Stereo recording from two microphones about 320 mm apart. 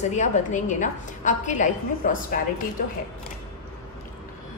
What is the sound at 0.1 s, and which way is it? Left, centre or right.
A woman's voice, left.